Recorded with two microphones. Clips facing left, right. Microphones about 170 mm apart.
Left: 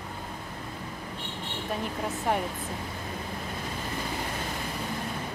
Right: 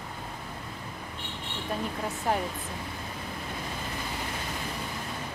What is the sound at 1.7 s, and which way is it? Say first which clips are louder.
Speech: even; centre (ahead or behind).